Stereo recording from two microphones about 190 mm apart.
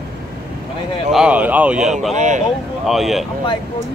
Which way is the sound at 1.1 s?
5° right (ahead or behind).